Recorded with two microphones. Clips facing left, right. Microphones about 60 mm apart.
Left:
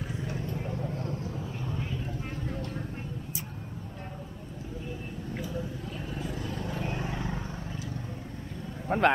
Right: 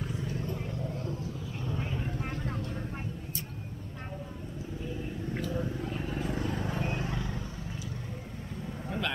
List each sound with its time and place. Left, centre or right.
5.6 s vehicle: right; by 6.8 s centre
6.8 s vehicle: centre
7.1 s vehicle: left
8.8 s a sound: left